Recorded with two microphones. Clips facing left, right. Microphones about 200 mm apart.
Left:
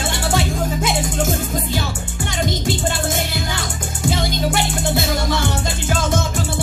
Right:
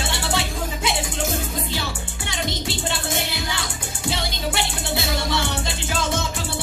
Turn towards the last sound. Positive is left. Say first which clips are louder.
# left 4 dB
turn(degrees=45)  # may be behind; listen again after turning